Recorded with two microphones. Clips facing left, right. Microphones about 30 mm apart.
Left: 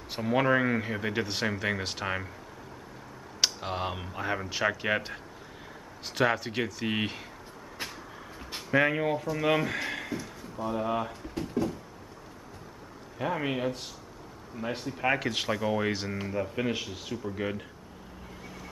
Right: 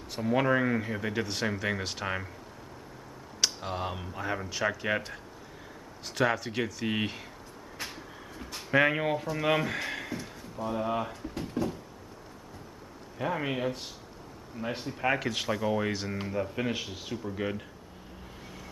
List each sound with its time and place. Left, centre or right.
0.1 s speech: centre
3.3 s speech: centre
8.6 s speech: centre
13.2 s speech: centre
15.0 s speech: centre
18.4 s vehicle: centre